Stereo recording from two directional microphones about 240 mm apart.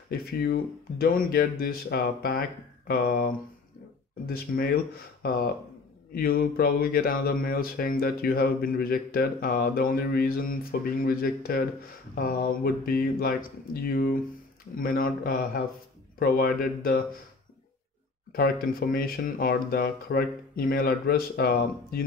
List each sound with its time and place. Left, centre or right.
0.1 s speech: left
6.1 s speech: left
18.3 s speech: left